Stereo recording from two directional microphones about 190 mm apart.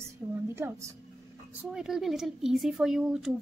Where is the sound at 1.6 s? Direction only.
5° right (ahead or behind).